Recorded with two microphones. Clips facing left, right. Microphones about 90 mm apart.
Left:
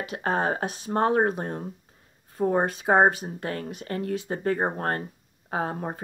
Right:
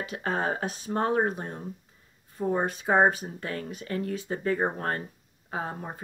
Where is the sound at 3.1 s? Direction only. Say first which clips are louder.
Left 2 dB; 65° left (ahead or behind).